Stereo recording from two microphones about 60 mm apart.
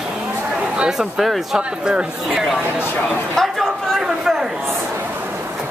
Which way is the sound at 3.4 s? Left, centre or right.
Centre.